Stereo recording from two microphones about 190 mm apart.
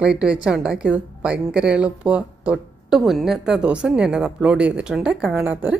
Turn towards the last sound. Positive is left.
turn(degrees=-5)  # may be behind; listen again after turning